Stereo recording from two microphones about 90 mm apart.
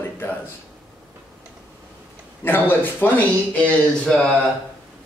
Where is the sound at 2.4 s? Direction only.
25° left (ahead or behind).